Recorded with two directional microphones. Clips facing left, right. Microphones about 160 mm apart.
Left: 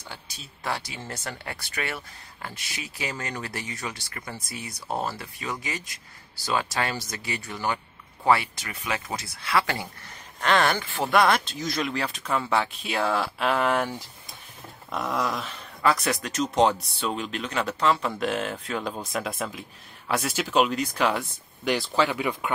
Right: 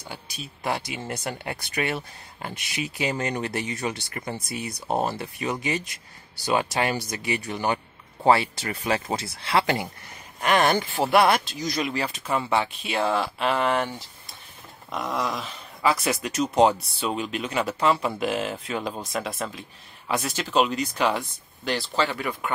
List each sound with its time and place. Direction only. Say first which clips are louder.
0.1 s speech: right 8 dB; 15° right (ahead or behind)
11.8 s speech: right 1 dB; 5° right (ahead or behind)
21.6 s speech: left 2 dB; 10° left (ahead or behind)